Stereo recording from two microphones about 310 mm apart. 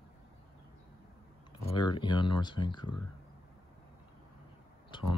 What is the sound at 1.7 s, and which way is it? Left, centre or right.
Speech, centre.